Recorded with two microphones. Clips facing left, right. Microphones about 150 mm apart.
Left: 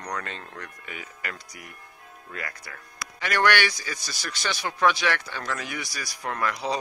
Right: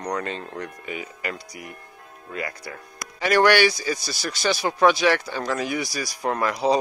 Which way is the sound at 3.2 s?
35° right (ahead or behind).